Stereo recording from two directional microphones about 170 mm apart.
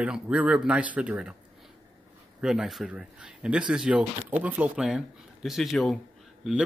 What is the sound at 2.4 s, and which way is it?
Speech, 5° right (ahead or behind).